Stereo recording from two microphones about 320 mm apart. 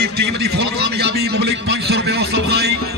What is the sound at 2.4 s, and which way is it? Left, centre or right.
Music, right.